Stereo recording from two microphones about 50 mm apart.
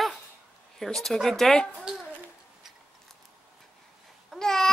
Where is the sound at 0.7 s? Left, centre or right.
Centre.